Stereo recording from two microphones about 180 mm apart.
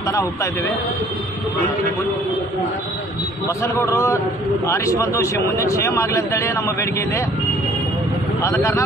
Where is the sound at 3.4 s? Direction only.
15° left (ahead or behind).